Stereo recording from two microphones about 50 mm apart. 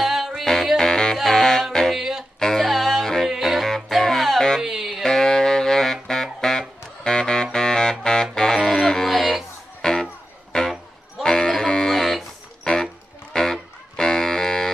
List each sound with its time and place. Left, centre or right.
0.0 s music: centre
0.7 s music: centre
1.9 s music: centre
2.3 s music: centre
2.6 s music: centre
5.0 s saxophone: centre
7.0 s music: centre
9.8 s music: centre
12.7 s music: centre